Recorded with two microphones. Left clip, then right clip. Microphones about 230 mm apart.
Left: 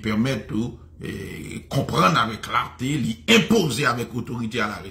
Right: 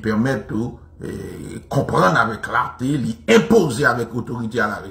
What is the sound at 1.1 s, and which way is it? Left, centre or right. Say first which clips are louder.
Speech: right 3 dB; centre.